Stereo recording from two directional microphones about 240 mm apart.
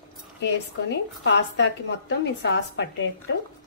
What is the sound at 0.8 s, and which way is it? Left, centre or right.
A woman's voice, left.